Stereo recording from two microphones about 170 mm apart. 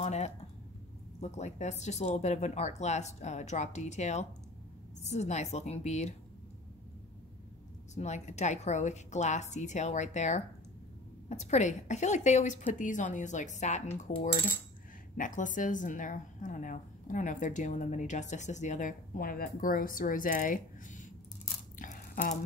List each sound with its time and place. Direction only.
0.0 s a woman's voice: 40° left (ahead or behind)
7.9 s a woman's voice: 40° left (ahead or behind)
15.1 s a woman's voice: 50° left (ahead or behind)
21.7 s a sound: 50° left (ahead or behind)